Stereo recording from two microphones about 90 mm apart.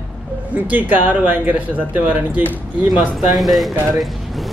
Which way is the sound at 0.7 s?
20° right (ahead or behind).